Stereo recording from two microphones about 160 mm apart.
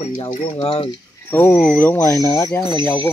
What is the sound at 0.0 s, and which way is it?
Speech, 35° left (ahead or behind).